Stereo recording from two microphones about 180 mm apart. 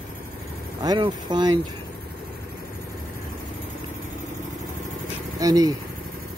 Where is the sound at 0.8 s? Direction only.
25° right (ahead or behind).